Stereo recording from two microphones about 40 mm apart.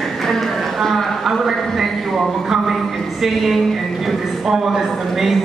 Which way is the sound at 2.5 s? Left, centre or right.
Centre.